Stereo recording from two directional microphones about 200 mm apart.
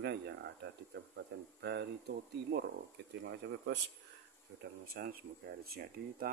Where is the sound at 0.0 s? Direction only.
55° right (ahead or behind).